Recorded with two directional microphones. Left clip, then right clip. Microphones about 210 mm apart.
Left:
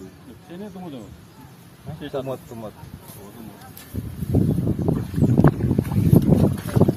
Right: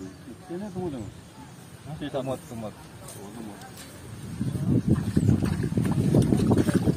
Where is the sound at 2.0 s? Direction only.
25° left (ahead or behind).